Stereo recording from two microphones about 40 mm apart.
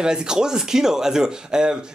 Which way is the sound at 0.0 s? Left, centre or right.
Centre.